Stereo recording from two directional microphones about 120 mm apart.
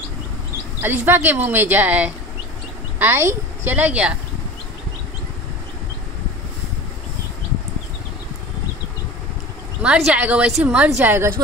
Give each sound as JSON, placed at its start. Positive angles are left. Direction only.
{"t": 0.8, "sound": "a woman's voice", "side_deg": -15}
{"t": 9.8, "sound": "a woman's voice", "side_deg": -10}